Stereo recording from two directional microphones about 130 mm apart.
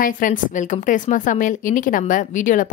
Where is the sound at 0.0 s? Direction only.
90° left.